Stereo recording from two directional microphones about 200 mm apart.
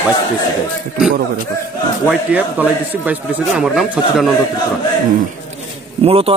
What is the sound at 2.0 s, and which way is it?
A man's voice, 10° right (ahead or behind).